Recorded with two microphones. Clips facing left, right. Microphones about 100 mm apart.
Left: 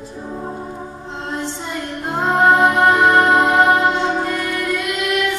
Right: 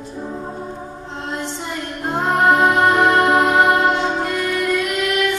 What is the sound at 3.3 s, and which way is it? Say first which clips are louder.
Music: left 1 dB; 15° right (ahead or behind).